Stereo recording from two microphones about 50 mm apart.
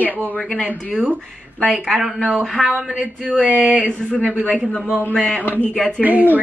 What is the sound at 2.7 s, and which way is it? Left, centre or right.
Speech, right.